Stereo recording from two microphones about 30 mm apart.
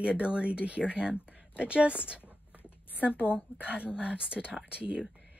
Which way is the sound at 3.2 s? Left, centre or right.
Right.